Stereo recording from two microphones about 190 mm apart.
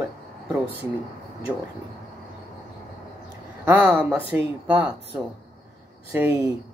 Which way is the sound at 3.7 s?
5° right (ahead or behind).